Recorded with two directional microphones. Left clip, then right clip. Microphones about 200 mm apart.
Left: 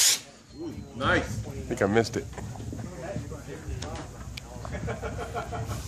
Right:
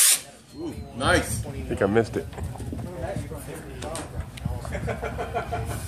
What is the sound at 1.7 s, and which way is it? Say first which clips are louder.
Speech: right 2 dB; 20° left (ahead or behind).